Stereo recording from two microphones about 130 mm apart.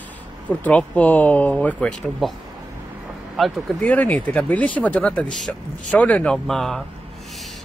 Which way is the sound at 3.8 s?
10° left (ahead or behind).